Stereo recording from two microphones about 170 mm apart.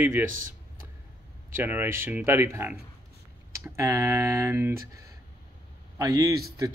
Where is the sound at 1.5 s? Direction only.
10° right (ahead or behind).